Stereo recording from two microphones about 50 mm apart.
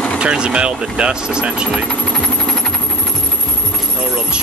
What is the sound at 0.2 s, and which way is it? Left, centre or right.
Speech, centre.